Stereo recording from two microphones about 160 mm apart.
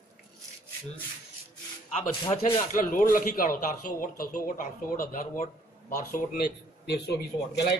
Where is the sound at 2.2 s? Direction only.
35° left (ahead or behind).